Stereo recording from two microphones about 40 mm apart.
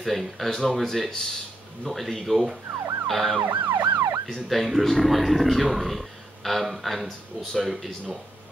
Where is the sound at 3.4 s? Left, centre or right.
Right.